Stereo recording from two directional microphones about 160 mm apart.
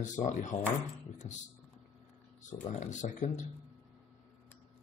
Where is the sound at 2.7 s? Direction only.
50° left (ahead or behind).